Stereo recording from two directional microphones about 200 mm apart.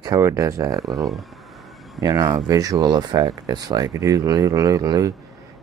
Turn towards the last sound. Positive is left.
turn(degrees=-20)  # may be behind; listen again after turning